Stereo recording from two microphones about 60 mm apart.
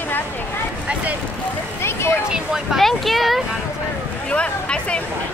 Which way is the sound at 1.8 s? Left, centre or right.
Left.